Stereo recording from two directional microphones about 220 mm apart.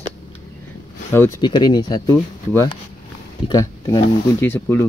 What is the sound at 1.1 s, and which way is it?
Speech, 10° left (ahead or behind).